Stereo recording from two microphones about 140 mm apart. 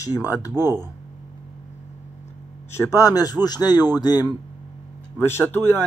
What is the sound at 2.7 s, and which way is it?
Speech, 20° left (ahead or behind).